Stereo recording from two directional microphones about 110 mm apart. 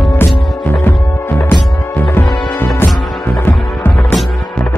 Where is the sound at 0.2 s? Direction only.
20° left (ahead or behind).